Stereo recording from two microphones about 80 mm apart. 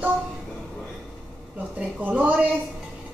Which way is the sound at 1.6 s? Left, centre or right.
Centre.